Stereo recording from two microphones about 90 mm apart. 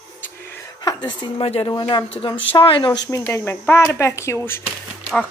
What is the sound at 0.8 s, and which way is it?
Speech, 60° left (ahead or behind).